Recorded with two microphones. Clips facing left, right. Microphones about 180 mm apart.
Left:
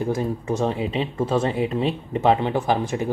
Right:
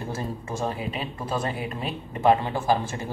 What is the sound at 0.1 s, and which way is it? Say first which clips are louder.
Speech: left 8 dB; 20° left (ahead or behind).